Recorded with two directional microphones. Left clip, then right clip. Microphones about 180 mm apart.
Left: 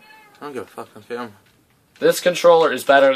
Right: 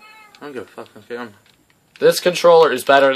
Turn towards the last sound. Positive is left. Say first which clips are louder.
# right 1 dB
turn(degrees=-35)  # may be behind; listen again after turning